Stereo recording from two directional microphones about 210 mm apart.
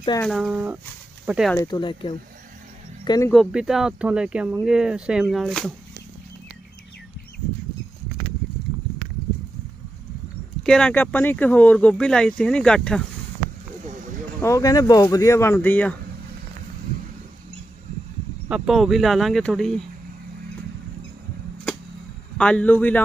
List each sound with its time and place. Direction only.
0.2 s speech: centre (ahead or behind)
1.5 s speech: 15° left (ahead or behind)
3.3 s speech: centre (ahead or behind)
10.6 s speech: 5° left (ahead or behind)
14.4 s speech: 15° left (ahead or behind)
18.5 s speech: centre (ahead or behind)
22.4 s speech: 5° left (ahead or behind)